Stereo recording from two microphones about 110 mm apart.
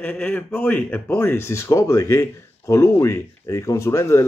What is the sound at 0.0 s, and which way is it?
Speech, 15° left (ahead or behind).